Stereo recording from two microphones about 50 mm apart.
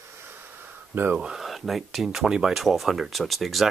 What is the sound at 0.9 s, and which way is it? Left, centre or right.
Speech, right.